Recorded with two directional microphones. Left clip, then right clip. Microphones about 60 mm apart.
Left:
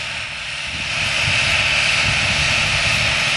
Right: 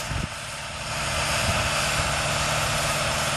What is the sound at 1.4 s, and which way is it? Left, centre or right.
Vehicle, right.